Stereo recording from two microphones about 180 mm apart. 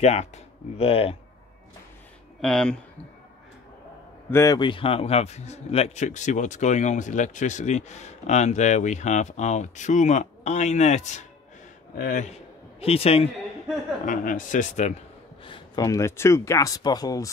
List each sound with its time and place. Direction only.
0.0 s a man's voice: 35° left (ahead or behind)
2.4 s speech: 5° left (ahead or behind)
4.3 s a man's voice: 15° left (ahead or behind); by 12.4 s 45° left (ahead or behind)
12.8 s a man's voice: 35° left (ahead or behind)
14.0 s speech: 45° left (ahead or behind)
15.4 s speech: 25° left (ahead or behind)